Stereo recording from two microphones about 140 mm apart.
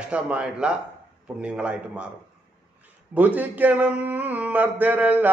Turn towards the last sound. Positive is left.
turn(degrees=-10)  # may be behind; listen again after turning